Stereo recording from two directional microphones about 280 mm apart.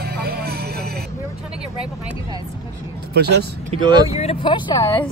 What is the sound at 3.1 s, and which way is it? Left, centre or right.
Speech, right.